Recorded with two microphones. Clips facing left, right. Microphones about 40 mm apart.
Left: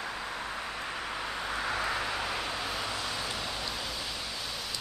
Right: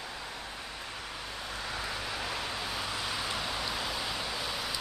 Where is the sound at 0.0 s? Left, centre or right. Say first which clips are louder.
Left 5 dB; centre.